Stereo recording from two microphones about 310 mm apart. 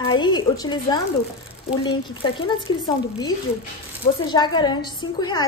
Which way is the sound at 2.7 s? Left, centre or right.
Left.